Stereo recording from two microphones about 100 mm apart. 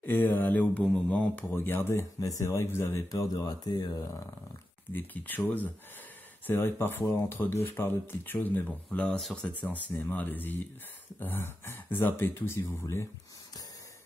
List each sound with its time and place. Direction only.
0.0 s speech: 20° left (ahead or behind)
2.1 s a man's voice: 35° left (ahead or behind)
4.9 s speech: 20° left (ahead or behind)